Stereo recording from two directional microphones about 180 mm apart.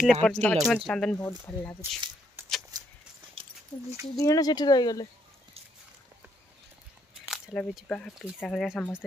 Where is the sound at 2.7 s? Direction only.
20° right (ahead or behind).